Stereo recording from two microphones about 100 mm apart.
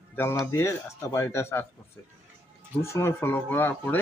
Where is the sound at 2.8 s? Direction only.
25° left (ahead or behind).